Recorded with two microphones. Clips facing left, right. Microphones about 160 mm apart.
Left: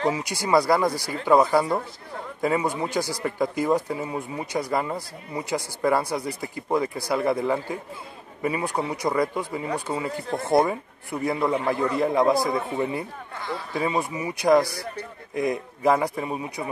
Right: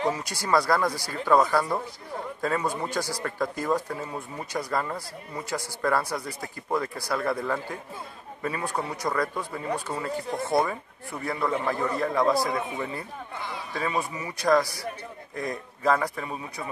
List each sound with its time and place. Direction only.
0.1 s speech: 15° left (ahead or behind)